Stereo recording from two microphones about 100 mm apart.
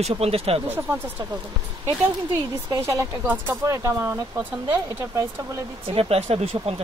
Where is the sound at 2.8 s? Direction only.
30° right (ahead or behind).